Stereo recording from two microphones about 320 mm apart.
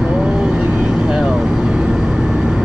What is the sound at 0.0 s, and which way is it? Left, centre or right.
Vehicle, centre.